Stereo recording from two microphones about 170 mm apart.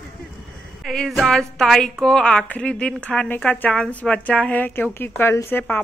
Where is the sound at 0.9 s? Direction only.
Centre (ahead or behind).